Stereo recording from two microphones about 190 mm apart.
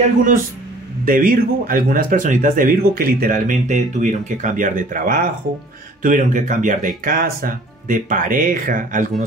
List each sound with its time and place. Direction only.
1.0 s speech: 45° right (ahead or behind)